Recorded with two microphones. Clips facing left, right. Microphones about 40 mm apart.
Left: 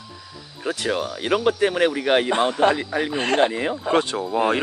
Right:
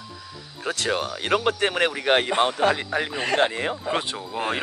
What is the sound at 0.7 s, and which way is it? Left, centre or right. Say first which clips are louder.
Speech: left 1 dB; right.